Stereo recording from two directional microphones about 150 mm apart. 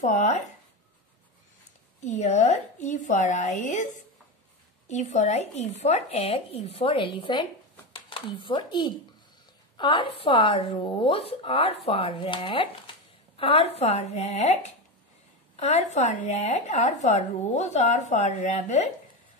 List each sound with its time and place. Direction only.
0.0 s speech: 50° left (ahead or behind)
2.0 s speech: 50° left (ahead or behind)